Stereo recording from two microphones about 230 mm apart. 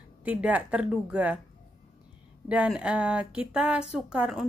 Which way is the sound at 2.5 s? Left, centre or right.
Centre.